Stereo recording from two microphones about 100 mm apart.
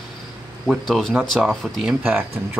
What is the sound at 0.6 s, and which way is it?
Speech, centre (ahead or behind).